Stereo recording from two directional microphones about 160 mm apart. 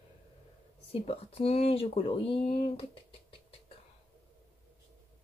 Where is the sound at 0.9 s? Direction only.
35° left (ahead or behind).